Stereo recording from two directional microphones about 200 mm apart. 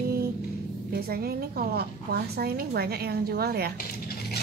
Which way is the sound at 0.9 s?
50° right (ahead or behind).